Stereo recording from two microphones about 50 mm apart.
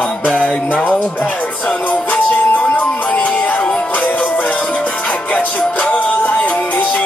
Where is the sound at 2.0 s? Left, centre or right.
Left.